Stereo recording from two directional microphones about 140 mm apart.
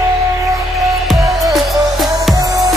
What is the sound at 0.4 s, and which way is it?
Music, 20° right (ahead or behind).